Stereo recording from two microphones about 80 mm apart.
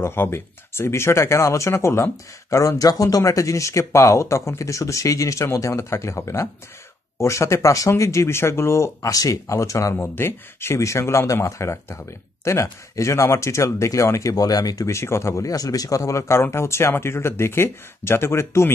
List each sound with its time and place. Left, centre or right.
0.0 s speech: left
2.5 s speech: left
9.9 s speech: left
14.3 s speech: left
14.9 s speech: left